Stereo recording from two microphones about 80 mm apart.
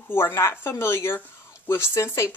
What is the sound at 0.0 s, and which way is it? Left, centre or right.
Speech, left.